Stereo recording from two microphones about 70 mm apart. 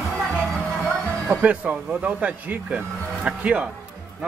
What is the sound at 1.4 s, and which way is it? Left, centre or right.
Speech, right.